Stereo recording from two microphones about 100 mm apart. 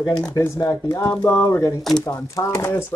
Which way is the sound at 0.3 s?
35° left (ahead or behind).